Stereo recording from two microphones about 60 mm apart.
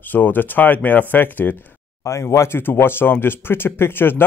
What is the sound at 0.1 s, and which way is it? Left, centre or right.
Speech, left.